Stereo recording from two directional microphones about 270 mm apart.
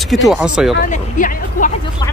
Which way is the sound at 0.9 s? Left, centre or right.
Left.